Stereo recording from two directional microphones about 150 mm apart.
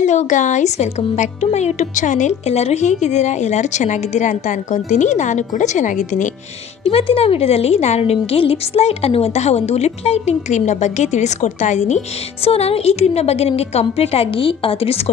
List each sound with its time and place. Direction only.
0.0 s speech: 55° left (ahead or behind)
6.8 s speech: 40° left (ahead or behind)